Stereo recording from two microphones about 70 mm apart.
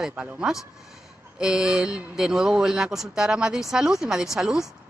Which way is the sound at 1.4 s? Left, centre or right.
Centre.